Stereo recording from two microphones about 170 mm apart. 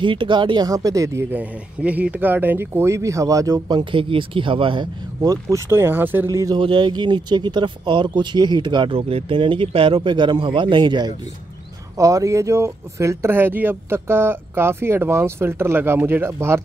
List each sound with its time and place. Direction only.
0.0 s speech: 30° right (ahead or behind)